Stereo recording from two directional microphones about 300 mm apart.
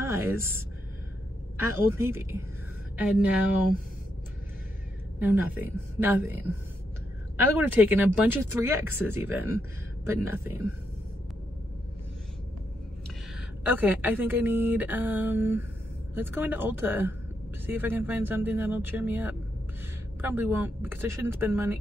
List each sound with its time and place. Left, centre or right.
0.0 s speech: centre
5.2 s speech: centre
7.5 s speech: centre
13.7 s speech: centre